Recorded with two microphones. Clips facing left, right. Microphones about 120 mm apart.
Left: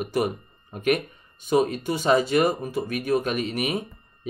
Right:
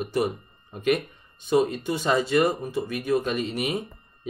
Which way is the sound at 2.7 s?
55° left (ahead or behind).